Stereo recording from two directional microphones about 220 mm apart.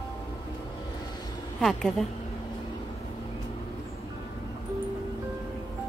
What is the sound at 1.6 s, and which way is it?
Speech, centre (ahead or behind).